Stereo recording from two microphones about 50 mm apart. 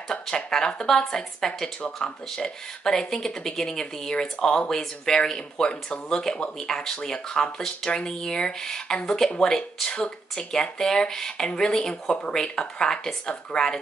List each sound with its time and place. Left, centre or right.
0.1 s speech: centre